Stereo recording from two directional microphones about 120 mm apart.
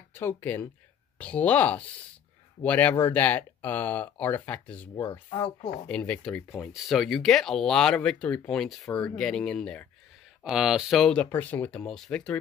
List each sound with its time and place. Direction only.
0.1 s speech: 20° left (ahead or behind)
10.4 s speech: 5° right (ahead or behind)
11.2 s speech: 15° left (ahead or behind)